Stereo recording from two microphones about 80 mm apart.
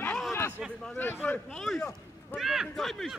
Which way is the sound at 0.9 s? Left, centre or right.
Left.